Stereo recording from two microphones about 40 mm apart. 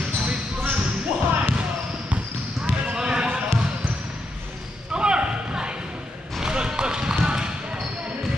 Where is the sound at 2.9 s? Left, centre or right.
Right.